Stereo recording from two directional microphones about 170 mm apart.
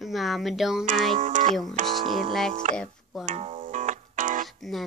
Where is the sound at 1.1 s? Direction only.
45° right (ahead or behind).